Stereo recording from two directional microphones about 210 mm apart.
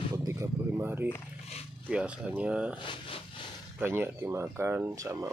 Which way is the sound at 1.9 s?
5° right (ahead or behind).